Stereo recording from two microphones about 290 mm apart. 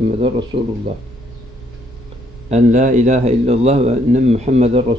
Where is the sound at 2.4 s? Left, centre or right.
Right.